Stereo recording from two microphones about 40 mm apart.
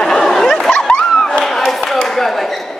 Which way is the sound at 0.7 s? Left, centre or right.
Left.